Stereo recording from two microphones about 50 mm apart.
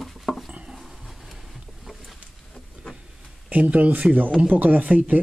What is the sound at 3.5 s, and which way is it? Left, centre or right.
A man's voice, right.